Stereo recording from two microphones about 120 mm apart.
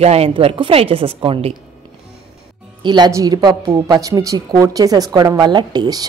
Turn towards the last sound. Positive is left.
turn(degrees=-35)  # may be behind; listen again after turning